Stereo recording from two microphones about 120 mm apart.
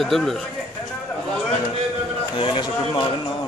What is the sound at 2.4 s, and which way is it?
Speech, 45° left (ahead or behind).